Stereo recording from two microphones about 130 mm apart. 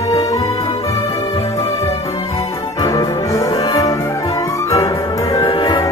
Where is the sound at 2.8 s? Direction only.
25° left (ahead or behind).